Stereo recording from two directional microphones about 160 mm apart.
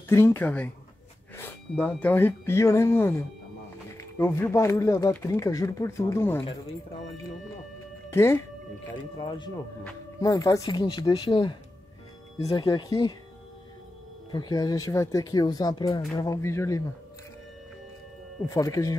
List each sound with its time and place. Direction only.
0.1 s speech: 15° left (ahead or behind)
8.1 s speech: 15° left (ahead or behind)
9.1 s speech: 30° left (ahead or behind)
9.6 s speech: 20° left (ahead or behind)
14.3 s speech: 25° left (ahead or behind)
18.5 s speech: 20° left (ahead or behind)